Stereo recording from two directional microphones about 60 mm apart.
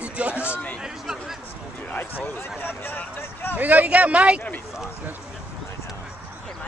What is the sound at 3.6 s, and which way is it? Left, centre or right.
Speech, right.